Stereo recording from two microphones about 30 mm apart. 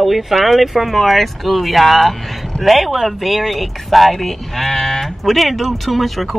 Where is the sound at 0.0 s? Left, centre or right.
Centre.